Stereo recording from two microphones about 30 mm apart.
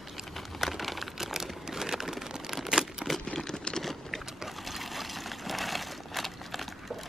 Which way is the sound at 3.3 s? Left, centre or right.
Centre.